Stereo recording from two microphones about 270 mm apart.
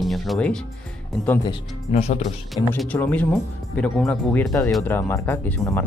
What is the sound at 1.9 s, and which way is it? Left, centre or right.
Speech, left.